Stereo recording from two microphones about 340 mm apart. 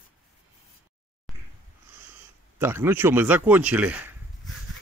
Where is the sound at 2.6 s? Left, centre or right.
Centre.